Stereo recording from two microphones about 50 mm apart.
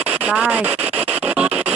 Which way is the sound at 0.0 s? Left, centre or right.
Right.